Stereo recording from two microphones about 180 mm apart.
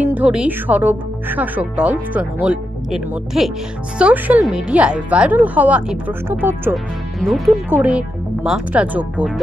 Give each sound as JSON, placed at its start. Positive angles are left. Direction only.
{"t": 0.0, "sound": "speech", "side_deg": -5}
{"t": 6.7, "sound": "speech", "side_deg": 0}